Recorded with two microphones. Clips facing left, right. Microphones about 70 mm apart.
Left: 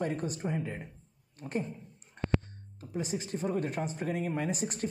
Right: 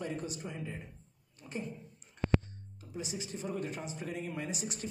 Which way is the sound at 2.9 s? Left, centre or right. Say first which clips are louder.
Left 6 dB; left.